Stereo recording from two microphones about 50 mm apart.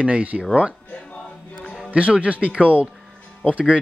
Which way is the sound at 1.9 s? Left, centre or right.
Right.